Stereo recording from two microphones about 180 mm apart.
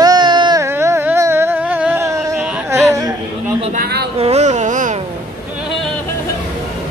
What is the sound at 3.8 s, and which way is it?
Speech, 65° right (ahead or behind).